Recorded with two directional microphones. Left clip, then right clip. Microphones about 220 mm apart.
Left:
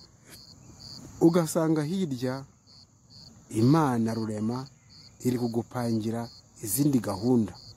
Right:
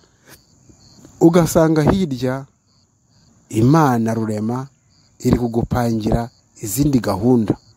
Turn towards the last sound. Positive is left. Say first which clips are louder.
# right 10 dB
turn(degrees=-35)  # may be behind; listen again after turning